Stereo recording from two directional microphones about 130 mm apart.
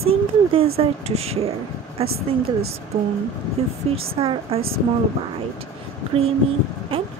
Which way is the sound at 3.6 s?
50° right (ahead or behind).